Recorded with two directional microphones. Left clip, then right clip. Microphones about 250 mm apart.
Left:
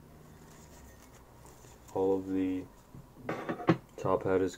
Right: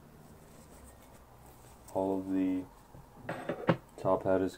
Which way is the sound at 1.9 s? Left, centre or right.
Centre.